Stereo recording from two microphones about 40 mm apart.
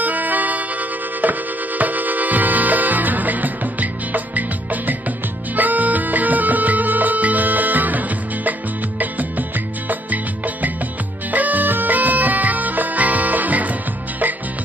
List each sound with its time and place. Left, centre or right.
0.0 s music: right
9.0 s music: right